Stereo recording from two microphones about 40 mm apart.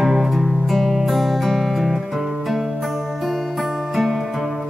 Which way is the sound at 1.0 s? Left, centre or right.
Centre.